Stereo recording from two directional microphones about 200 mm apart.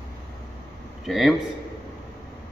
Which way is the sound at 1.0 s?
Centre (ahead or behind).